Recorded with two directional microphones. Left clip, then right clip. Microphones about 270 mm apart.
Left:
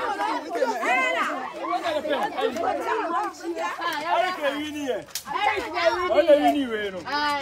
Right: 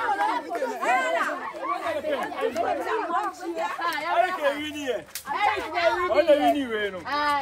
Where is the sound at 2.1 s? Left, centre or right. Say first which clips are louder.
Left 2 dB; centre.